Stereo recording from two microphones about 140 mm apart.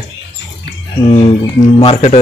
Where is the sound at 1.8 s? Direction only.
50° left (ahead or behind).